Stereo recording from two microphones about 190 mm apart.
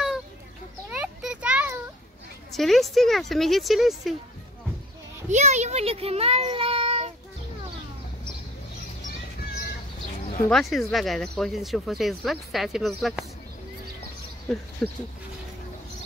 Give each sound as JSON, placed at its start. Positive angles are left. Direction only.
{"t": 0.8, "sound": "a sound", "side_deg": -5}
{"t": 2.5, "sound": "speech", "side_deg": 0}
{"t": 5.3, "sound": "a child's voice", "side_deg": -35}
{"t": 10.5, "sound": "speech", "side_deg": 0}
{"t": 14.8, "sound": "speech", "side_deg": 0}